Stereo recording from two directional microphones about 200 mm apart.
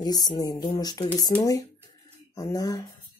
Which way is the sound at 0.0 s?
20° left (ahead or behind).